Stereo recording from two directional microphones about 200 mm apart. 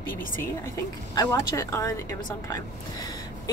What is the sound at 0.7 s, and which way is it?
A woman's voice, 15° left (ahead or behind).